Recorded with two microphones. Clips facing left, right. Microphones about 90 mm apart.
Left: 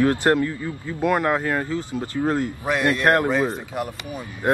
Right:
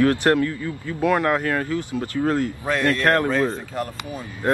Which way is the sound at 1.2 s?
15° left (ahead or behind).